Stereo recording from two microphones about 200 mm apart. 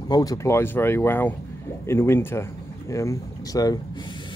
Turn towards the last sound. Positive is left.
turn(degrees=20)  # may be behind; listen again after turning